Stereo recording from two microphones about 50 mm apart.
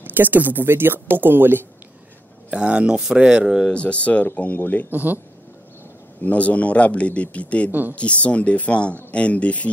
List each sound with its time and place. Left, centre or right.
0.0 s a woman's voice: right
2.5 s speech: right
3.6 s speech: left
4.9 s speech: right
6.2 s speech: left